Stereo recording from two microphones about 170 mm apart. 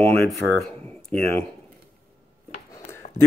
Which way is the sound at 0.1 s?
Centre (ahead or behind).